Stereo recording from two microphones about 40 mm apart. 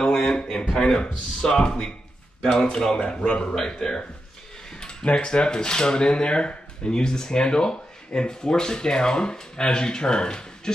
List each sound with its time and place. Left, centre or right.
0.0 s a sound: centre
0.7 s speech: centre
3.4 s speech: centre